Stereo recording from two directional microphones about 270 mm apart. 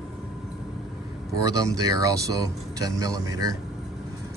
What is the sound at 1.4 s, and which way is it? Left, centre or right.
Speech, centre.